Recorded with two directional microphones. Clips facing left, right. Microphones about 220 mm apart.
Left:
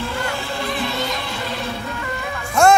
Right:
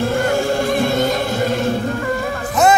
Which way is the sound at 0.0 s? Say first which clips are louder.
Right 9 dB; 45° right (ahead or behind).